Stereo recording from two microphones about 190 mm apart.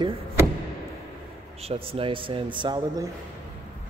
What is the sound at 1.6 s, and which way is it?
Speech, 30° right (ahead or behind).